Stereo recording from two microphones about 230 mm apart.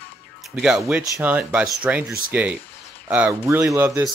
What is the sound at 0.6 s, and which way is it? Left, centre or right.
Speech, centre.